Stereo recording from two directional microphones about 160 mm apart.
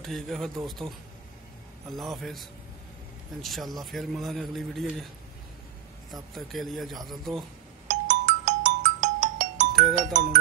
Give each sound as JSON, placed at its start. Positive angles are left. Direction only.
{"t": 0.0, "sound": "a man's voice", "side_deg": 0}
{"t": 2.0, "sound": "a man's voice", "side_deg": 0}
{"t": 3.4, "sound": "a man's voice", "side_deg": 0}
{"t": 6.3, "sound": "a man's voice", "side_deg": 0}
{"t": 8.1, "sound": "music", "side_deg": -50}
{"t": 9.9, "sound": "speech", "side_deg": -50}